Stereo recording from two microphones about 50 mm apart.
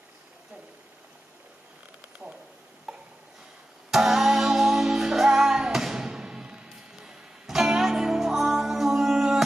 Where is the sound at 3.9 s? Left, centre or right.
Centre.